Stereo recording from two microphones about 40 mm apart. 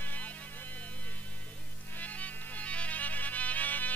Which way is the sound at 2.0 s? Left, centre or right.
Left.